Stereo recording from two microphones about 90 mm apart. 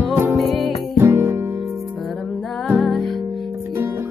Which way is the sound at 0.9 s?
30° right (ahead or behind).